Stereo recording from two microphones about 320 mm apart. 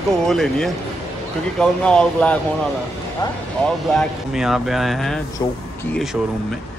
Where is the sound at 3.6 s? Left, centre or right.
Centre.